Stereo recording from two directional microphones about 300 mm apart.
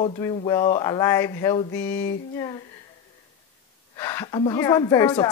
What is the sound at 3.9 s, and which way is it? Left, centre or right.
Speech, centre.